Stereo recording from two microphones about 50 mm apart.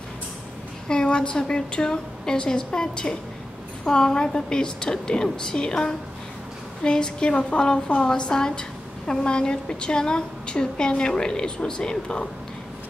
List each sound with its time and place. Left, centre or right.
0.8 s a woman's voice: centre